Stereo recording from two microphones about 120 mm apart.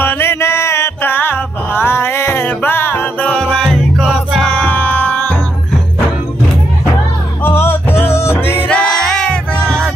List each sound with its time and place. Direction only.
0.0 s music: 20° left (ahead or behind)
7.4 s music: 20° left (ahead or behind)